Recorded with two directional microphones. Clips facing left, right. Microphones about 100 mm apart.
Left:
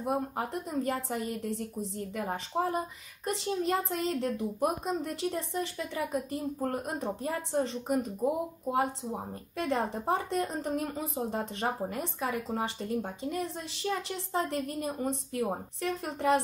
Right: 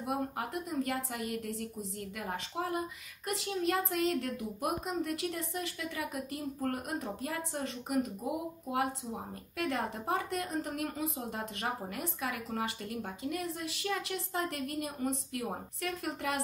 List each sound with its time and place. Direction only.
0.0 s a woman's voice: 30° left (ahead or behind)